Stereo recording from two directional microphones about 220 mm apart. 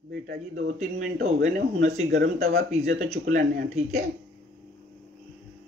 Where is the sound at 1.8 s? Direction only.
30° right (ahead or behind).